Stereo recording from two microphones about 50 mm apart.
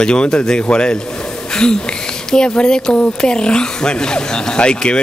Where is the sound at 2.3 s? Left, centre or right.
Centre.